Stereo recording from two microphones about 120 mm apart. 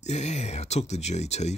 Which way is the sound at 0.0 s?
70° left (ahead or behind).